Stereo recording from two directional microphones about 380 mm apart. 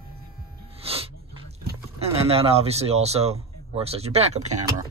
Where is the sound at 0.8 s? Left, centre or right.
Centre.